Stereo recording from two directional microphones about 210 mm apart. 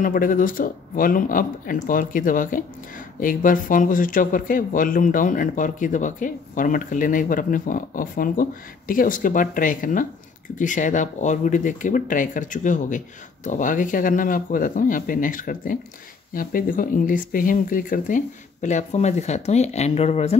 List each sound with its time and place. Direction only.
0.0 s speech: 40° left (ahead or behind)